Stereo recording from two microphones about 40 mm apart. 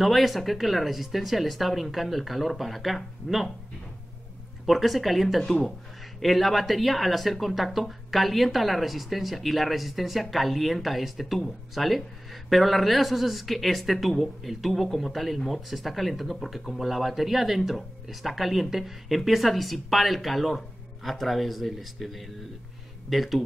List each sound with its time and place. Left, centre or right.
0.0 s speech: centre
4.6 s speech: centre